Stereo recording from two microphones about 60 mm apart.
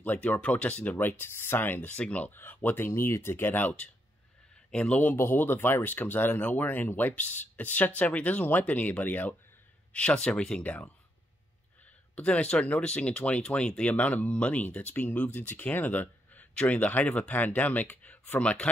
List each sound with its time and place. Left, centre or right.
0.0 s speech: left
2.3 s speech: left
2.9 s speech: left
4.6 s speech: centre
5.1 s speech: left; by 10.6 s centre
10.6 s speech: left
12.2 s speech: centre